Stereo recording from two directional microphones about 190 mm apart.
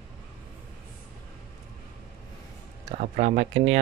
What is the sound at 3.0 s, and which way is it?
Speech, 40° right (ahead or behind).